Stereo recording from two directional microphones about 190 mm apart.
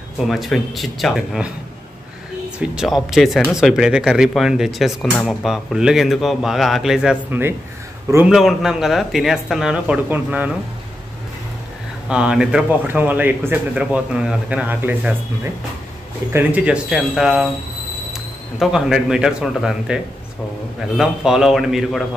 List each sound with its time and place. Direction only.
0.3 s speech: centre (ahead or behind)
2.6 s speech: 5° right (ahead or behind)
12.1 s speech: 5° right (ahead or behind)